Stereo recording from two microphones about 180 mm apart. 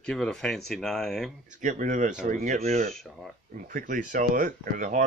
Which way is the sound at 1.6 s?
45° right (ahead or behind).